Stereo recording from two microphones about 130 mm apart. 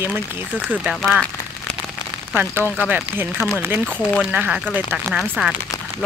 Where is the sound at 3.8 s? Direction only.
10° left (ahead or behind).